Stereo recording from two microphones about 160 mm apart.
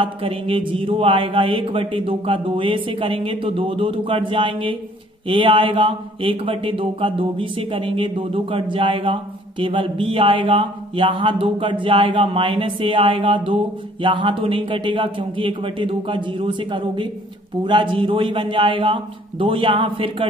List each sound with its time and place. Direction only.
0.0 s speech: 35° right (ahead or behind)